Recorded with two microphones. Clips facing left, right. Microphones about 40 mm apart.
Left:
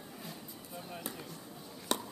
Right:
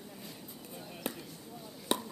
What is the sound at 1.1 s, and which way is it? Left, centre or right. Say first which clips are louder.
Basketball bounce: right 9 dB; right.